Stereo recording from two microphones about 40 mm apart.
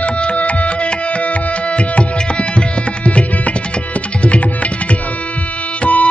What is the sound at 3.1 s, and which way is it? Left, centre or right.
Music, left.